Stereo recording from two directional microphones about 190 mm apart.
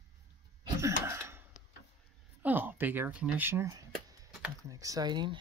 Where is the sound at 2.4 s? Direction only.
10° right (ahead or behind).